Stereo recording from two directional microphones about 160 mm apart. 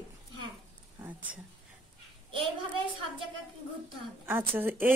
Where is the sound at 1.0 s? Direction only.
10° right (ahead or behind).